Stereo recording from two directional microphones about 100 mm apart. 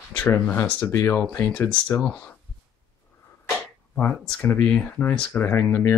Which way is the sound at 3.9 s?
10° left (ahead or behind).